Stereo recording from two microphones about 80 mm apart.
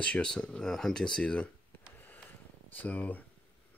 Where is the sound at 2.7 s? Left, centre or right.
Left.